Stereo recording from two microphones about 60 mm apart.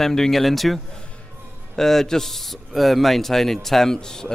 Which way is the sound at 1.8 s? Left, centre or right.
Centre.